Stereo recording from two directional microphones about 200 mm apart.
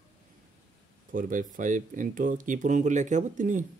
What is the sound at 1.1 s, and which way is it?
Speech, 40° right (ahead or behind).